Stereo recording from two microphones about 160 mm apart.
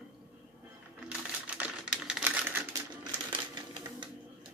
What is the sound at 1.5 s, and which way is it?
Typing, 10° right (ahead or behind).